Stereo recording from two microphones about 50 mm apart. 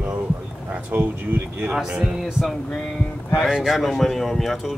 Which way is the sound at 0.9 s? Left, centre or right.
Right.